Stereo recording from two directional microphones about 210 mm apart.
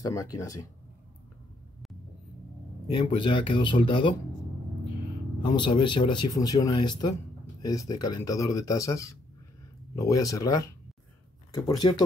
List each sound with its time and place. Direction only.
0.0 s speech: 15° left (ahead or behind)
2.9 s speech: 25° left (ahead or behind)
5.4 s speech: 25° left (ahead or behind)